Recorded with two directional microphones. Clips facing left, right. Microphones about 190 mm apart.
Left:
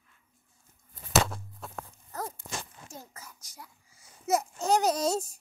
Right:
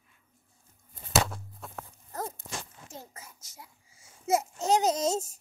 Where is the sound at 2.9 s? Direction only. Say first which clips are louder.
Right 1 dB; 25° right (ahead or behind).